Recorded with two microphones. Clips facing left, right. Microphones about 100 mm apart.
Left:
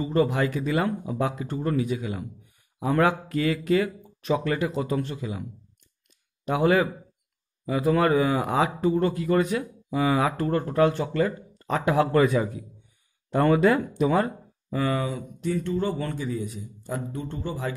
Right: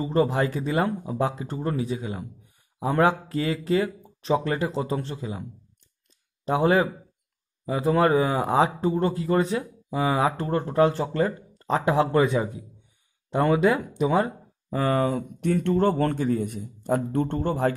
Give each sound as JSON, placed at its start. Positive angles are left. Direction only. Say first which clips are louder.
{"t": 0.0, "sound": "speech", "louder": "even", "side_deg": -30}
{"t": 14.7, "sound": "speech", "louder": "right 3 dB", "side_deg": -40}